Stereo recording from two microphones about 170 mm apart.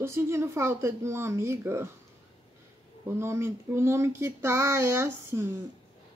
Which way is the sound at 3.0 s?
15° right (ahead or behind).